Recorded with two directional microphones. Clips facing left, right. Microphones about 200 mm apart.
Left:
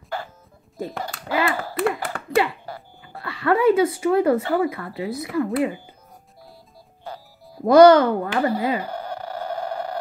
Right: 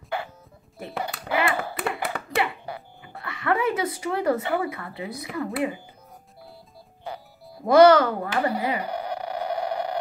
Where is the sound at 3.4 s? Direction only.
30° left (ahead or behind).